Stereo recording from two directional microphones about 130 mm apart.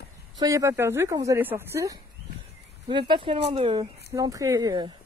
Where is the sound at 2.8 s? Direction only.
35° right (ahead or behind).